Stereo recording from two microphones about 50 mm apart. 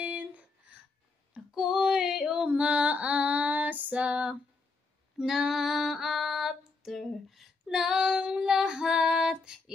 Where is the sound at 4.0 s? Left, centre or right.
Right.